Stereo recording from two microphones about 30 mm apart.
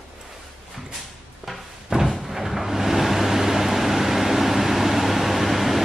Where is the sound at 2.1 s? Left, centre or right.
Centre.